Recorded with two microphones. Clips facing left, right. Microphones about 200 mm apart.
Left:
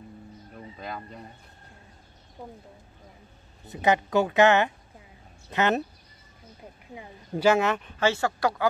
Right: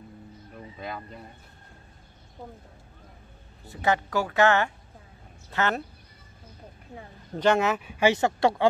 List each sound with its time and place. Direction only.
0.7 s speech: centre (ahead or behind)
3.6 s a woman's voice: 20° left (ahead or behind)
7.0 s speech: 5° left (ahead or behind); by 8.6 s 25° right (ahead or behind)